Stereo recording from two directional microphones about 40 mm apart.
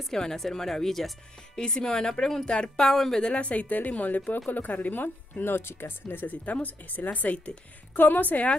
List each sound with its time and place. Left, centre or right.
0.1 s speech: centre
1.5 s speech: centre
3.3 s a woman's voice: left
5.0 s speech: left
6.4 s a woman's voice: left
7.9 s a woman's voice: left